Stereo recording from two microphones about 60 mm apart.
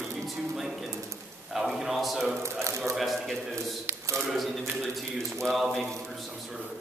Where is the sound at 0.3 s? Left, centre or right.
Centre.